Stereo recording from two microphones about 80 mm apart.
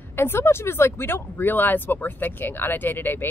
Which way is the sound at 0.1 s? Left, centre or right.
Left.